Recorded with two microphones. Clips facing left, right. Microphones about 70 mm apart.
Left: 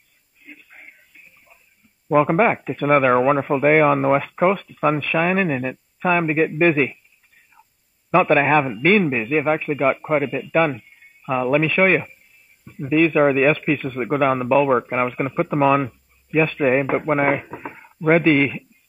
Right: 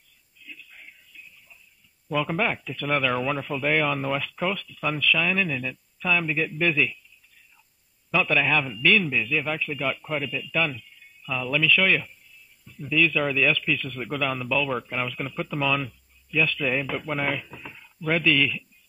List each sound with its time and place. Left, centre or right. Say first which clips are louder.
0.4 s a sound: left 3 dB; left
2.0 s a man's voice: left 10 dB; left
8.1 s a man's voice: left 8 dB; left